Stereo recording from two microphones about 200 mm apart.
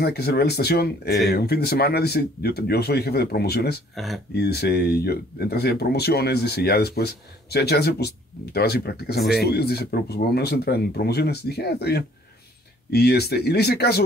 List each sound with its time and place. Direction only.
0.0 s speech: 55° left (ahead or behind)
3.9 s speech: centre (ahead or behind)
4.3 s speech: 55° left (ahead or behind)